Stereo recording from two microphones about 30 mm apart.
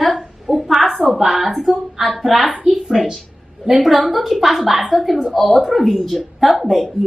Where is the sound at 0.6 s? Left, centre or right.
Centre.